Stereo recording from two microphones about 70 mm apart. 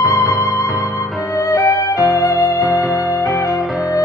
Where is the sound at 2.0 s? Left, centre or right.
Centre.